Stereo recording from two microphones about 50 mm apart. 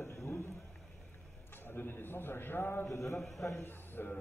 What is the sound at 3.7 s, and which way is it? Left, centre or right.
Speech, left.